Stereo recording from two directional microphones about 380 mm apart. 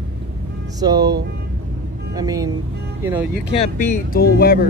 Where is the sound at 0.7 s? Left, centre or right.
Centre.